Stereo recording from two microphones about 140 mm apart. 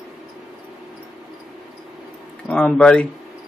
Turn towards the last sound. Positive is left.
turn(degrees=5)  # may be behind; listen again after turning